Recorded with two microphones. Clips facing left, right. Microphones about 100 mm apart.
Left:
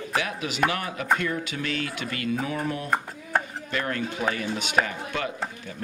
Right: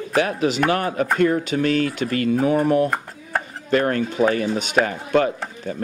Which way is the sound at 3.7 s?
45° right (ahead or behind).